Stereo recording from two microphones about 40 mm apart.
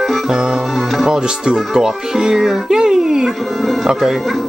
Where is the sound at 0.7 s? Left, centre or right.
Centre.